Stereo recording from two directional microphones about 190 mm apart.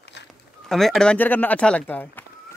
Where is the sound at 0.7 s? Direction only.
Centre (ahead or behind).